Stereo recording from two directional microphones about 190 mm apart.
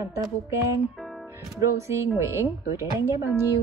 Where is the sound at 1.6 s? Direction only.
15° right (ahead or behind).